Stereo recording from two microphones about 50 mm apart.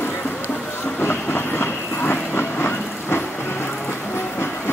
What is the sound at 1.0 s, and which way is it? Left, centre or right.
Train, left.